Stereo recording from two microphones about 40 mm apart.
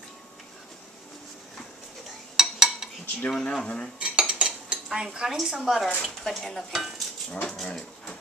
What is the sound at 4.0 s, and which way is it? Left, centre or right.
Dishes, right.